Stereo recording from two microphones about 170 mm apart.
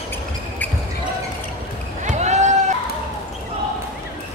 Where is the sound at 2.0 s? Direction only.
40° right (ahead or behind).